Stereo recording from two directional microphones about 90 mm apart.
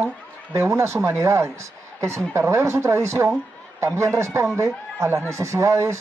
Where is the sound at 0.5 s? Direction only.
30° right (ahead or behind).